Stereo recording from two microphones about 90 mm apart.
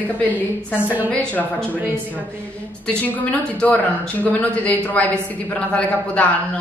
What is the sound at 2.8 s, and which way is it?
A woman's voice, 20° left (ahead or behind).